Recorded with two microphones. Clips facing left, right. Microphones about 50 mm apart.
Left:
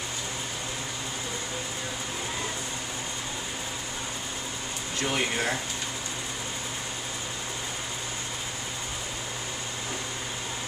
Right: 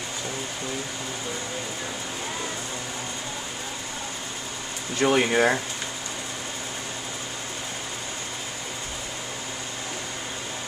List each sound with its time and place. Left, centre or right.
5.0 s speech: right